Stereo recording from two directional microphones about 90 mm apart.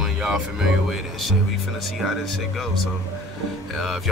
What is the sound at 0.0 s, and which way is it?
Speech, 5° right (ahead or behind).